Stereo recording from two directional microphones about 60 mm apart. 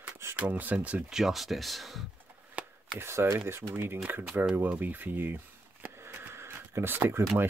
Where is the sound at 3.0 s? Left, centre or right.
Right.